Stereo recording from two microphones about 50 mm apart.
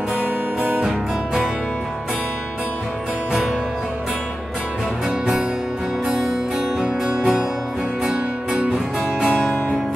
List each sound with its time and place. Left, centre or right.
0.6 s music: right
0.8 s music: centre
6.0 s music: centre
8.1 s music: right